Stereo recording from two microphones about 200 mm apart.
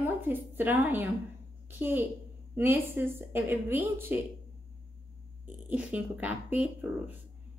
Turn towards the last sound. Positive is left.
turn(degrees=-10)  # may be behind; listen again after turning